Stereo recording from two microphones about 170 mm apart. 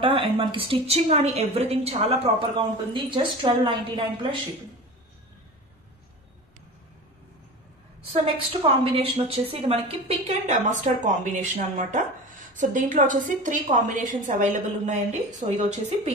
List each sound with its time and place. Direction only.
0.0 s a woman's voice: 30° right (ahead or behind)
8.6 s a woman's voice: 35° right (ahead or behind)